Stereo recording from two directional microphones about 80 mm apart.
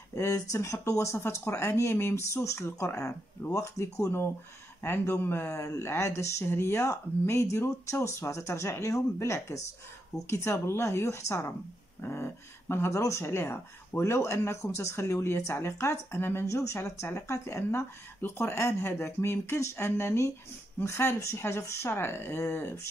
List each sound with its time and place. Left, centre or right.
0.1 s speech: left